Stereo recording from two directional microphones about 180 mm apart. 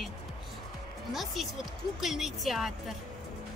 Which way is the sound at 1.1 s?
Centre (ahead or behind).